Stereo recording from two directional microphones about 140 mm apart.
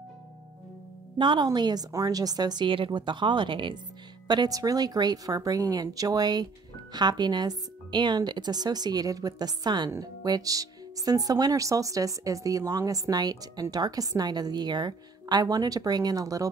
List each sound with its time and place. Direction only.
1.1 s a woman's voice: 35° right (ahead or behind)